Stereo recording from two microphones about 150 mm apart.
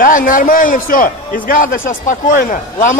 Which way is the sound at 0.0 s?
65° left (ahead or behind).